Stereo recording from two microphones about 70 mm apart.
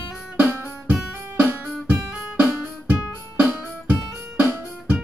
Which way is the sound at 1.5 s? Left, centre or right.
Right.